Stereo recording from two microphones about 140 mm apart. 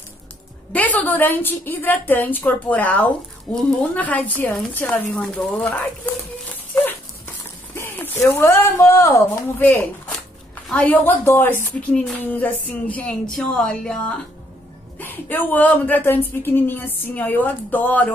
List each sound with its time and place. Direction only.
0.7 s a woman's voice: 10° left (ahead or behind)
6.7 s dog: 15° left (ahead or behind)
7.7 s a woman's voice: 15° left (ahead or behind)